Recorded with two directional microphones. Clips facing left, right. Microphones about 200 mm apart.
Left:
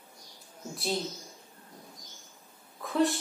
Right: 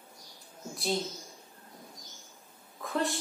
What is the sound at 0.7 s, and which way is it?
Speech, centre (ahead or behind).